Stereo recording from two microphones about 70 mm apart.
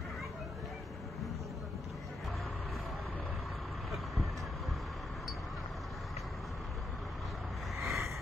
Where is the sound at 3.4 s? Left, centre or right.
Centre.